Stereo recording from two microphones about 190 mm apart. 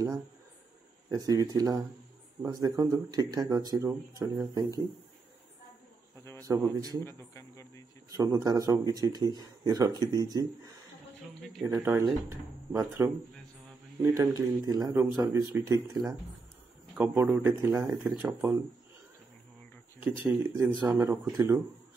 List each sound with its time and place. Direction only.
1.1 s speech: 20° right (ahead or behind)
6.4 s speech: 15° right (ahead or behind)
7.1 s a man's voice: 15° left (ahead or behind)
8.1 s speech: 15° right (ahead or behind)
11.6 s speech: 15° right (ahead or behind)
14.3 s speech: 15° right (ahead or behind)
20.0 s speech: 15° right (ahead or behind)